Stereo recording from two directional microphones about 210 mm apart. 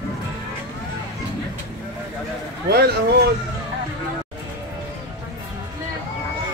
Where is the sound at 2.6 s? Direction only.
50° right (ahead or behind).